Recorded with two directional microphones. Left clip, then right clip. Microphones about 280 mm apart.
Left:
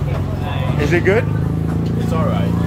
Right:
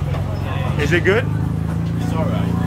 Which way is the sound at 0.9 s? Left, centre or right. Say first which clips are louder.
Left 1 dB; centre.